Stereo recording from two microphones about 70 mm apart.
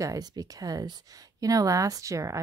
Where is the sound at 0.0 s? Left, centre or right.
Right.